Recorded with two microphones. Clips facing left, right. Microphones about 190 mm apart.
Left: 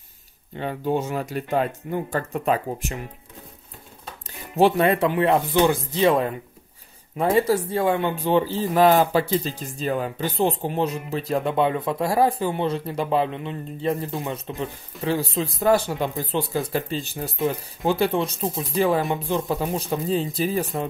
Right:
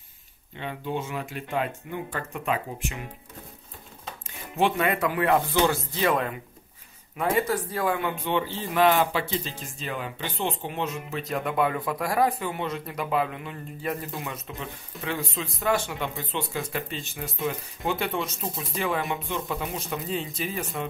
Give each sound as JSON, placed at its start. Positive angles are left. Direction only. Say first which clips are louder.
{"t": 0.6, "sound": "speech", "louder": "left 7 dB", "side_deg": 40}
{"t": 4.6, "sound": "speech", "louder": "left 6 dB", "side_deg": 35}
{"t": 7.2, "sound": "speech", "louder": "left 5 dB", "side_deg": 30}